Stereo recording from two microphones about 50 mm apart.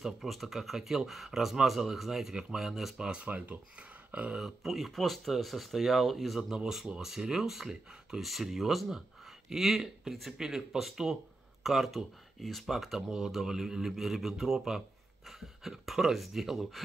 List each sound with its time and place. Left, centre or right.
0.0 s speech: centre
3.0 s speech: right
4.4 s speech: centre